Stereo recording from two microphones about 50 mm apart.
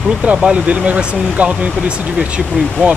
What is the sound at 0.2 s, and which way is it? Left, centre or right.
Speech, right.